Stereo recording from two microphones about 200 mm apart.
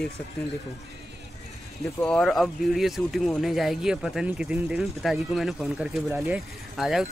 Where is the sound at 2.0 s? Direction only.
5° left (ahead or behind).